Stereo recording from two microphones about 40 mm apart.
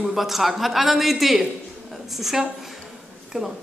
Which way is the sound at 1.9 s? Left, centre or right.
Centre.